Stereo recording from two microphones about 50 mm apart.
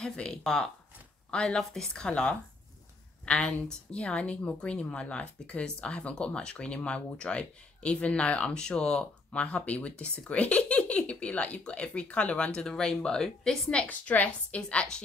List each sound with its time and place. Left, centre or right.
0.0 s a woman's voice: centre
13.8 s speech: left